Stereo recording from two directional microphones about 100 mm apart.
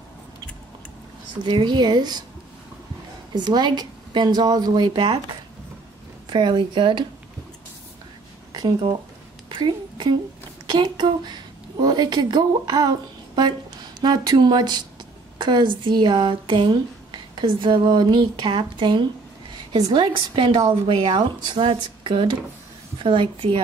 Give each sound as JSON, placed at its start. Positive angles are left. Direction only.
{"t": 1.4, "sound": "speech", "side_deg": -45}
{"t": 3.3, "sound": "speech", "side_deg": -45}
{"t": 6.2, "sound": "speech", "side_deg": -45}
{"t": 9.5, "sound": "a sound", "side_deg": -50}
{"t": 10.7, "sound": "speech", "side_deg": -45}
{"t": 14.0, "sound": "a woman's voice", "side_deg": -45}